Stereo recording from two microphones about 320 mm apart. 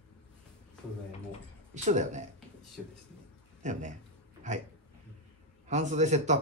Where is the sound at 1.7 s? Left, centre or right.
Right.